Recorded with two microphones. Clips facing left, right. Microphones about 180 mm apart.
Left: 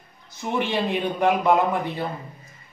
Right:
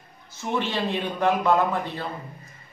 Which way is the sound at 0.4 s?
15° left (ahead or behind).